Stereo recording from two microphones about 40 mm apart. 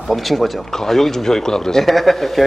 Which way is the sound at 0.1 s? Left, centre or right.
Centre.